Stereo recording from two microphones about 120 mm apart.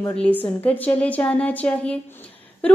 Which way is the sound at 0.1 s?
10° left (ahead or behind).